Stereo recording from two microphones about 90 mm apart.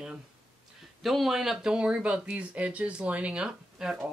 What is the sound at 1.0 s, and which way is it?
Speech, centre (ahead or behind).